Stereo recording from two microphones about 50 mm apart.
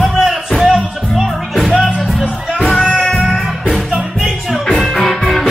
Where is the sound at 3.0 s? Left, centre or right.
Centre.